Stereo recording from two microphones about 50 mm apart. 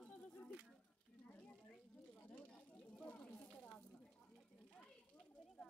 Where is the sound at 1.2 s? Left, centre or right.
Left.